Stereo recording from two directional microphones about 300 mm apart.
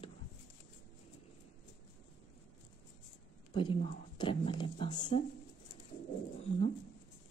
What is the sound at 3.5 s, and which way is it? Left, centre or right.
Speech, centre.